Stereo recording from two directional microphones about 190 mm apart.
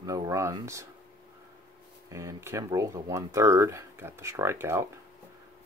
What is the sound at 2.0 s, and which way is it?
Speech, 15° right (ahead or behind).